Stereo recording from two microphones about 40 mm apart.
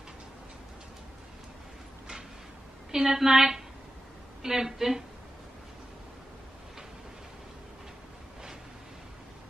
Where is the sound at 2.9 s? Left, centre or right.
Centre.